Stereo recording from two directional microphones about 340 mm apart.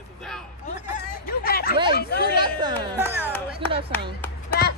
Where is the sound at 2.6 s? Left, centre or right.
Centre.